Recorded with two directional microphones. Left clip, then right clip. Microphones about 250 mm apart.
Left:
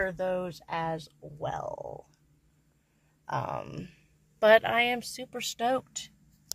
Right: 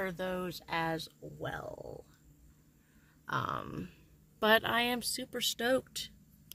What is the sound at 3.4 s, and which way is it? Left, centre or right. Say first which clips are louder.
A woman's voice: left 2 dB; centre.